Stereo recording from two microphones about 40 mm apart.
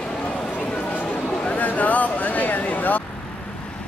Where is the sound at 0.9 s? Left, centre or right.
Left.